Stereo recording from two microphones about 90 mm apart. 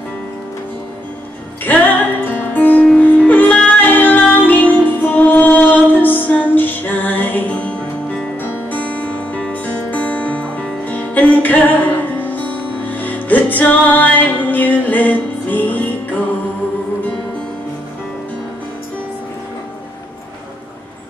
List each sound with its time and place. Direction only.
1.6 s music: 20° left (ahead or behind)